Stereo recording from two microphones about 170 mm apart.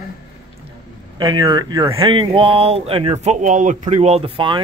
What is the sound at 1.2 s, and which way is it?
Speech, 25° right (ahead or behind).